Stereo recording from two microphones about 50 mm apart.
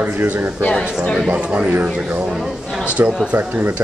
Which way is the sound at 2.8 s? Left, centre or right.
Right.